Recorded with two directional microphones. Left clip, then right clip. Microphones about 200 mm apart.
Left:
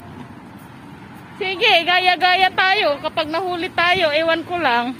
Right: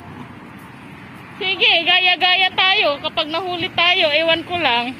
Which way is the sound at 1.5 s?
20° left (ahead or behind).